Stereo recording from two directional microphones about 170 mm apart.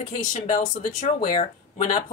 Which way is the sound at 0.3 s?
50° left (ahead or behind).